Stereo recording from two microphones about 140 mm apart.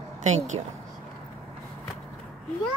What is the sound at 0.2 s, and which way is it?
Speech, 55° right (ahead or behind).